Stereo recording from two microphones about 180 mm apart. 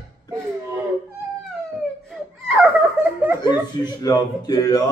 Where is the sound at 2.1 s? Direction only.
Centre (ahead or behind).